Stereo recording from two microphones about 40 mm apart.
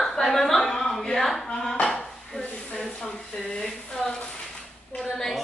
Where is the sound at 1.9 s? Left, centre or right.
Left.